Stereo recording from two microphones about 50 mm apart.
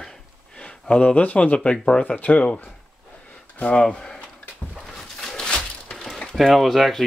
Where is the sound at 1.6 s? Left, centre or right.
Left.